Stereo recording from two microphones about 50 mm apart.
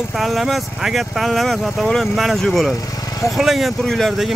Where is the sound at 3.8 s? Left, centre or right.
Centre.